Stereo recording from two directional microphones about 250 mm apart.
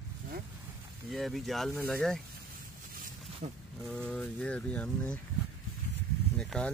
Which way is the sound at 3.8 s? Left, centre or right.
Centre.